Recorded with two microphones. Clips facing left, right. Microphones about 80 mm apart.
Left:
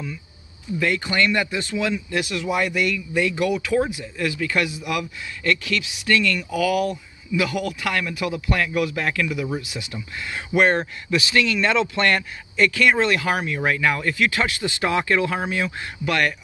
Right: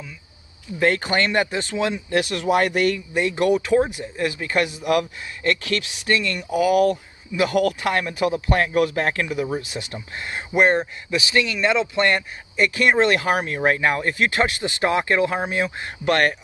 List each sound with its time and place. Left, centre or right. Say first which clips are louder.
0.7 s speech: right 2 dB; right
2.1 s speech: right 6 dB; right
3.2 s speech: right 2 dB; right
6.0 s speech: left 2 dB; right
7.8 s speech: right 3 dB; right
10.5 s a man's voice: right 1 dB; centre
16.1 s speech: right 3 dB; right